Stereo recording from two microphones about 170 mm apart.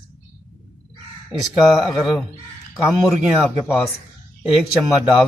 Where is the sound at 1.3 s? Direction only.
Centre (ahead or behind).